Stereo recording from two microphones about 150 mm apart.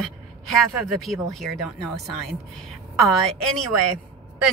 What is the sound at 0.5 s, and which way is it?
Speech, centre (ahead or behind).